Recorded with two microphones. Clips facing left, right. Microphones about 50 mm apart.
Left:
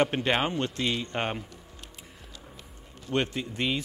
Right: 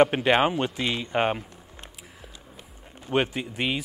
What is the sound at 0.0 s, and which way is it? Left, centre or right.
Speech, centre.